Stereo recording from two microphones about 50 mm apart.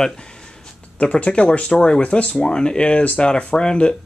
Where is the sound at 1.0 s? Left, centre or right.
Centre.